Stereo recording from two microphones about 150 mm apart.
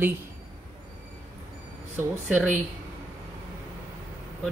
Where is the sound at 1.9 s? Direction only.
15° right (ahead or behind).